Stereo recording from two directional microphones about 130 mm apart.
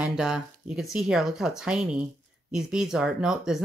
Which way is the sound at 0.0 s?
5° right (ahead or behind).